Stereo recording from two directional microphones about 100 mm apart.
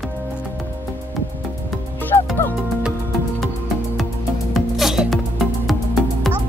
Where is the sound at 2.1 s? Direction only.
50° left (ahead or behind).